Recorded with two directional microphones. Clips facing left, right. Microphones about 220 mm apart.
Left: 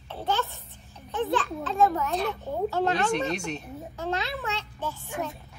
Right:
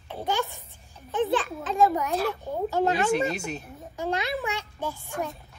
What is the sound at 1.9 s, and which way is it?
A child's voice, 15° right (ahead or behind).